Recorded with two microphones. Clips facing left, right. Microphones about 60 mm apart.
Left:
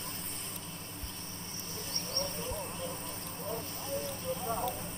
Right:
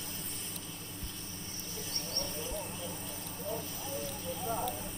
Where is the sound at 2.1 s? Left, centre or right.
Left.